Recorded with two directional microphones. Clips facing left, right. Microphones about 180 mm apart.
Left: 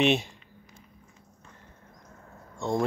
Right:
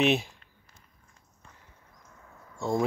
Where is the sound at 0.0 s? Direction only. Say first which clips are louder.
Left 1 dB; centre (ahead or behind).